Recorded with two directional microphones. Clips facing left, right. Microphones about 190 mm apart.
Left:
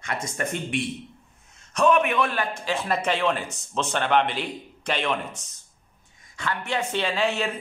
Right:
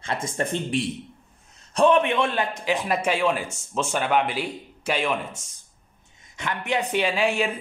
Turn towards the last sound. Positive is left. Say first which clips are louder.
# right 2 dB
turn(degrees=-10)  # may be behind; listen again after turning